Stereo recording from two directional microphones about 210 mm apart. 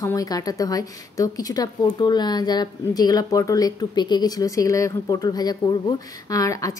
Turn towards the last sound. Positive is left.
turn(degrees=15)  # may be behind; listen again after turning